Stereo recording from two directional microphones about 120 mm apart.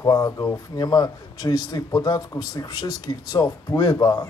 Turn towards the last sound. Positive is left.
turn(degrees=30)  # may be behind; listen again after turning